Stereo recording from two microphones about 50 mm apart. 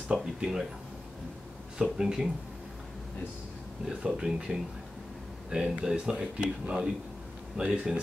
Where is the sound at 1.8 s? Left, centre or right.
Centre.